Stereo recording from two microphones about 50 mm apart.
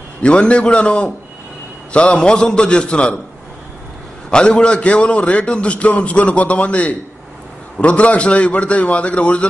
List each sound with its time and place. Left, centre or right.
0.2 s a man's voice: left
4.3 s a man's voice: centre